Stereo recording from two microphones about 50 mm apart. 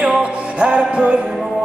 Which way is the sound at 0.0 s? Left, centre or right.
Centre.